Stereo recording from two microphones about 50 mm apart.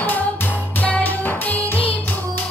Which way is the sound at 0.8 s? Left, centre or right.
Left.